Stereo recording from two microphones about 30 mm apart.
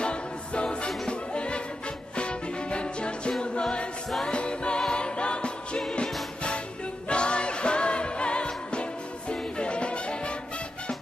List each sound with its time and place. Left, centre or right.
0.0 s music: left
7.1 s music: left